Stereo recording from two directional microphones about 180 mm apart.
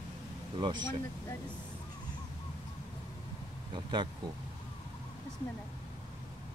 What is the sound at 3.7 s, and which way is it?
Speech, 25° right (ahead or behind).